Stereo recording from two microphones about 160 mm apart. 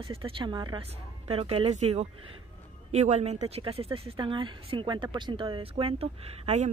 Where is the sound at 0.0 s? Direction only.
35° right (ahead or behind).